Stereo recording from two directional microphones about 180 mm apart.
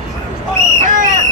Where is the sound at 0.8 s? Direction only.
45° right (ahead or behind).